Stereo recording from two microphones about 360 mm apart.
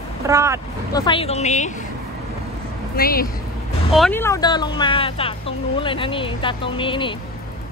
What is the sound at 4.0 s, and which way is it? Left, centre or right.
Speech, centre.